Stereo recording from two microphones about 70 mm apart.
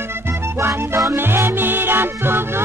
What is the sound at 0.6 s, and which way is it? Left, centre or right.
Music, right.